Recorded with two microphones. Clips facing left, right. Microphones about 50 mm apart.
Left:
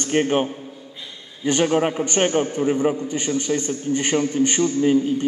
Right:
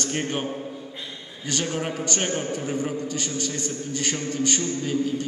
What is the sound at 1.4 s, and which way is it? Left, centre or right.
A man's voice, left.